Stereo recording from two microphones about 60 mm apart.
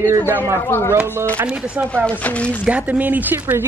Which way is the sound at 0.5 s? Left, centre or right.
Left.